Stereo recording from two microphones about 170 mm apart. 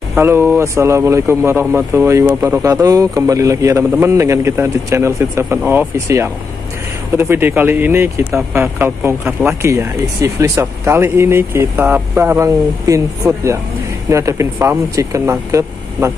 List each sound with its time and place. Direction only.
0.2 s speech: 15° right (ahead or behind)